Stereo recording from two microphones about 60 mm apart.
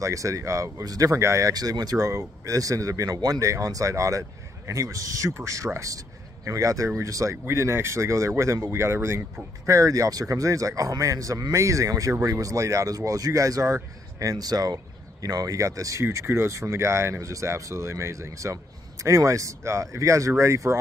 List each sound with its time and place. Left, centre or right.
0.0 s speech: right
1.1 s speech: right
1.5 s a man's voice: right
7.4 s speech: right
9.7 s a man's voice: right
14.2 s speech: right
17.3 s speech: right